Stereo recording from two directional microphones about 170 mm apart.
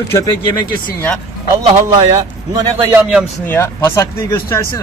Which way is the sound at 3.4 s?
15° left (ahead or behind).